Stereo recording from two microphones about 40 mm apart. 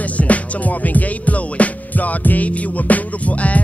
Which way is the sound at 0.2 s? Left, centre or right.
Left.